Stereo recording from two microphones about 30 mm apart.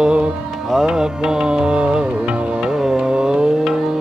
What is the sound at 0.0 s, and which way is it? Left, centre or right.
Music, right.